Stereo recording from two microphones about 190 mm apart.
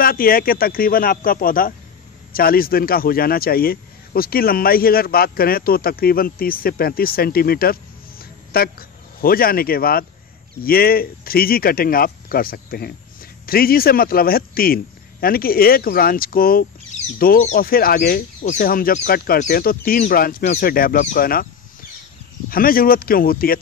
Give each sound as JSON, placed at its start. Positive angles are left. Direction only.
{"t": 0.0, "sound": "a man's voice", "side_deg": 50}
{"t": 22.5, "sound": "a man's voice", "side_deg": 50}